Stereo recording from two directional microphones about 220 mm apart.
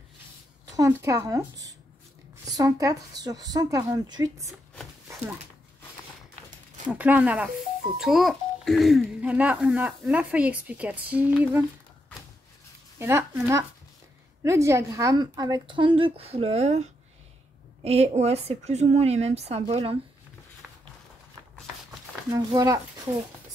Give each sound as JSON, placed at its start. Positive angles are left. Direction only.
{"t": 0.7, "sound": "speech", "side_deg": -15}
{"t": 6.9, "sound": "a child's voice", "side_deg": -5}
{"t": 13.0, "sound": "a woman's voice", "side_deg": -10}
{"t": 22.3, "sound": "speech", "side_deg": -15}